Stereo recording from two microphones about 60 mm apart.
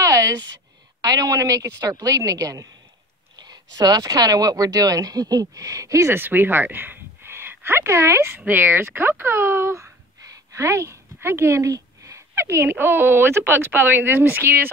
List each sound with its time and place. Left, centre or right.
0.0 s a sound: right
1.0 s a woman's voice: right
1.8 s a woman's voice: right
3.7 s speech: right
6.1 s a woman's voice: right
8.5 s speech: right
10.2 s a sound: right
11.7 s speech: right